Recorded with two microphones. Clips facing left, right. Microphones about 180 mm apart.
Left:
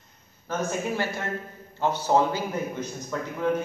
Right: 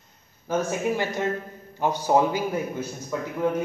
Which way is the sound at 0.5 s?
15° right (ahead or behind).